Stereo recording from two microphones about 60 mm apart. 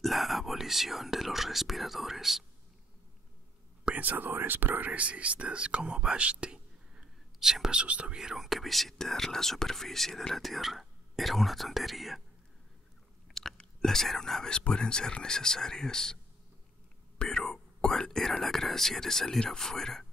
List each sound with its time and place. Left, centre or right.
0.0 s speech: centre
3.8 s speech: right
7.3 s speech: centre
7.8 s speech: right
8.2 s speech: centre
13.3 s chewing: centre
13.6 s speech: centre
17.2 s speech: centre